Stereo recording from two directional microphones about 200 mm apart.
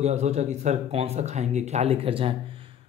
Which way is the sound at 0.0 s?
35° right (ahead or behind).